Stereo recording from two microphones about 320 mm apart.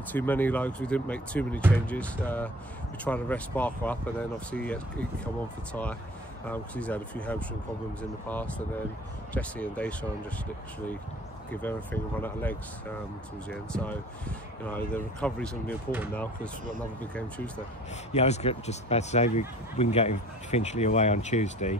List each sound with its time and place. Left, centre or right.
0.1 s speech: centre
11.5 s speech: centre
18.1 s speech: centre